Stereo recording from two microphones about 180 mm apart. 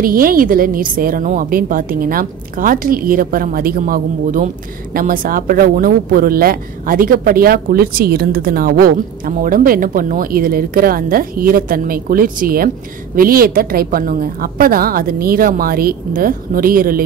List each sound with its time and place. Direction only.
0.0 s speech: 50° right (ahead or behind)